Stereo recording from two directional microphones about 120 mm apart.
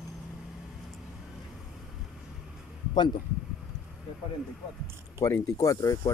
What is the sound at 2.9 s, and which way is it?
Speech, 40° left (ahead or behind).